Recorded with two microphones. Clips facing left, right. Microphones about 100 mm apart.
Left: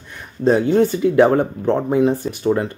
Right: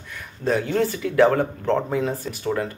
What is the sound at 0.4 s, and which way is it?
Speech, 25° left (ahead or behind).